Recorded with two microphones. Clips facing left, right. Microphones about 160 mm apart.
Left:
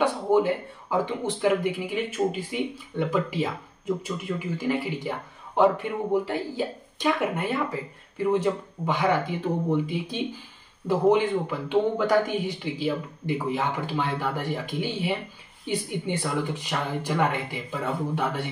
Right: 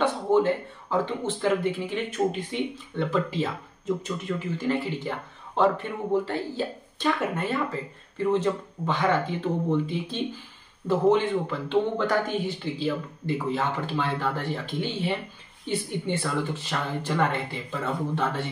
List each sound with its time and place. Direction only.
0.0 s speech: 10° left (ahead or behind)